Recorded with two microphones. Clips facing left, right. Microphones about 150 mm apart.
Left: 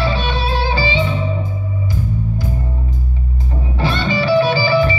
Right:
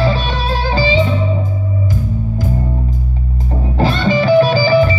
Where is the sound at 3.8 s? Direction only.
45° right (ahead or behind).